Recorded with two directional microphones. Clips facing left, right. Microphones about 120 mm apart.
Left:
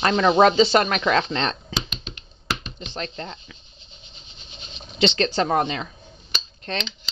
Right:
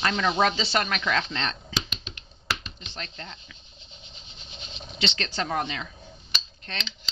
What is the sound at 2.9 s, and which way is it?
Speech, 40° left (ahead or behind).